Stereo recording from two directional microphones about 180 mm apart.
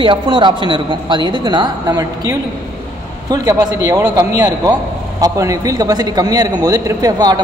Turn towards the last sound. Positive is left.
turn(degrees=-20)  # may be behind; listen again after turning